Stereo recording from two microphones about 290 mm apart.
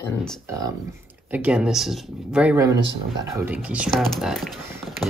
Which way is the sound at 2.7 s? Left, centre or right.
Right.